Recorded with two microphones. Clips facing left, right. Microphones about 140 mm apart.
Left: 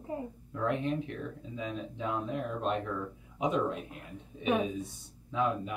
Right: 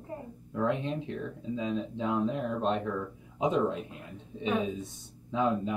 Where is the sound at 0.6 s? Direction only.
20° right (ahead or behind).